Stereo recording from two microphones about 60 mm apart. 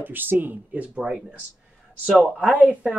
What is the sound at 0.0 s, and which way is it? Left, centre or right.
Speech, right.